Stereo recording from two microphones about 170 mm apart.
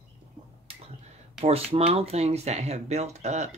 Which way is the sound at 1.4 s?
35° right (ahead or behind).